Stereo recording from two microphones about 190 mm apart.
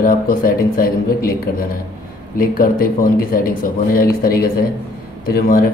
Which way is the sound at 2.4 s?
50° left (ahead or behind).